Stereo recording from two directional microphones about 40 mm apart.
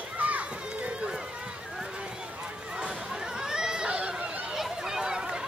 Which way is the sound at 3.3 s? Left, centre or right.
Centre.